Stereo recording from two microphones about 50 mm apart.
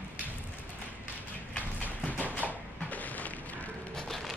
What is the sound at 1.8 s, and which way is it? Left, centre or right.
Music, left.